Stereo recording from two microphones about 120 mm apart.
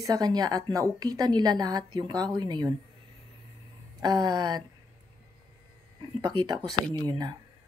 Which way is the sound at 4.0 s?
35° right (ahead or behind).